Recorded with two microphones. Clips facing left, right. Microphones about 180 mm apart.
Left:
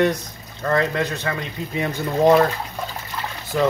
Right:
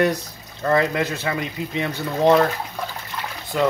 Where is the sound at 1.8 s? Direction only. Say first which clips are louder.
Left 2 dB; 10° left (ahead or behind).